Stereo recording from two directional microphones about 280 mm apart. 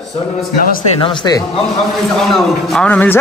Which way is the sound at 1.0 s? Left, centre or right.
Centre.